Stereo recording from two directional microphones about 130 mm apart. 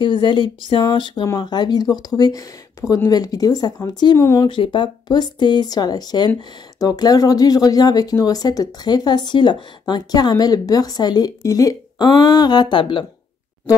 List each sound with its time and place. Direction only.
0.0 s speech: 40° left (ahead or behind)
4.2 s speech: 20° left (ahead or behind)
4.5 s speech: 40° left (ahead or behind)